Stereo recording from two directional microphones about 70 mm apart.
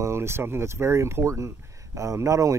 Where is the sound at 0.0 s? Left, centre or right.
Right.